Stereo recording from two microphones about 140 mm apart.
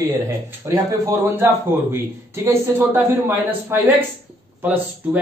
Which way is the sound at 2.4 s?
15° right (ahead or behind).